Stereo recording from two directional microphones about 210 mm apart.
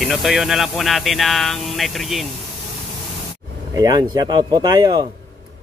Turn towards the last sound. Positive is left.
turn(degrees=-20)  # may be behind; listen again after turning